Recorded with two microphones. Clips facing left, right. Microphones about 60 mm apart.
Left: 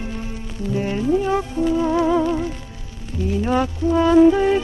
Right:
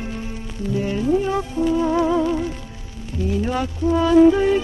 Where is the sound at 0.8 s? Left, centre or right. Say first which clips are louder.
Even; left.